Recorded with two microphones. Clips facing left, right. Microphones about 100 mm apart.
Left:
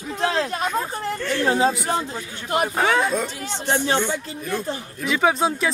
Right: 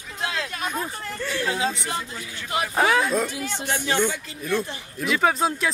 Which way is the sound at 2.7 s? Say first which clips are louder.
Right 2 dB; centre (ahead or behind).